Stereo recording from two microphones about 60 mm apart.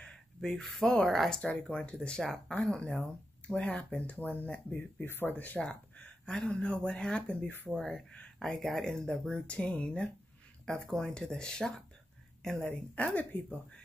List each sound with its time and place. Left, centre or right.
0.0 s gasp: centre
0.5 s speech: centre
1.4 s speech: left
5.0 s speech: left
5.3 s speech: left
7.4 s speech: left
7.7 s speech: centre
12.9 s speech: left